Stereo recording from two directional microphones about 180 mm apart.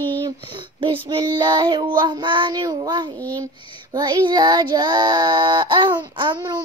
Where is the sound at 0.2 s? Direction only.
25° right (ahead or behind).